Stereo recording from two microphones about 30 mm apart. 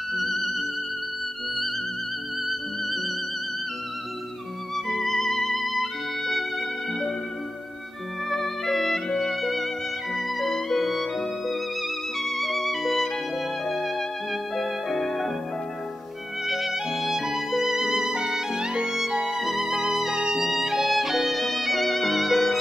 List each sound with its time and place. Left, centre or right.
0.1 s music: centre
4.8 s music: centre
8.3 s music: centre
16.4 s music: centre
18.6 s music: right; by 20.9 s centre
21.0 s violin: centre